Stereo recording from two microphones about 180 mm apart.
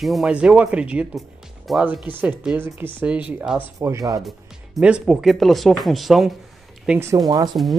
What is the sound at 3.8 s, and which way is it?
Speech, 15° right (ahead or behind).